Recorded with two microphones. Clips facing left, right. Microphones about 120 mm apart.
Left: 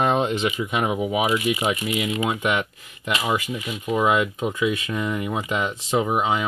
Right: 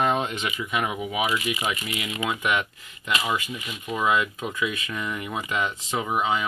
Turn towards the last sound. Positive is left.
turn(degrees=30)  # may be behind; listen again after turning